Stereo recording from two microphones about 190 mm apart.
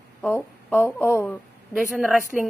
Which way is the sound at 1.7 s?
5° right (ahead or behind).